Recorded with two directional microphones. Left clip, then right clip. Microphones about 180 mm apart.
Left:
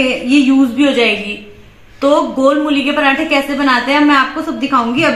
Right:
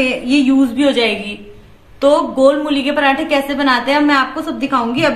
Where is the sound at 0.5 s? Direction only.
30° right (ahead or behind).